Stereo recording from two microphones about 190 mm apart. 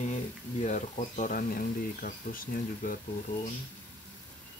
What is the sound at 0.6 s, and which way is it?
Speech, 40° left (ahead or behind).